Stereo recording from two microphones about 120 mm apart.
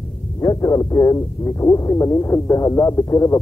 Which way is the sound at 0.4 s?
35° left (ahead or behind).